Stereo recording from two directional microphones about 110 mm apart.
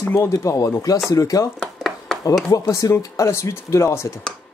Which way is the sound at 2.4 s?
30° left (ahead or behind).